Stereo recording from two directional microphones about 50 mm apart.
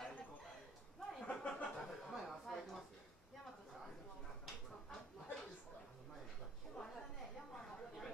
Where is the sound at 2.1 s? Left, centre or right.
Centre.